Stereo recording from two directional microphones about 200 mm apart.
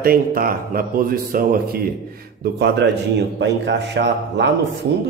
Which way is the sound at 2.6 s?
60° right (ahead or behind).